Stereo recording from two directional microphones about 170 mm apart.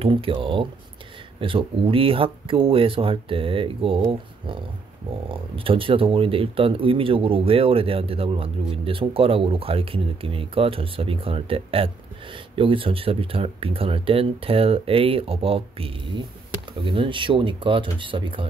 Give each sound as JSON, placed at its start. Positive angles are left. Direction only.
{"t": 0.0, "sound": "speech", "side_deg": -35}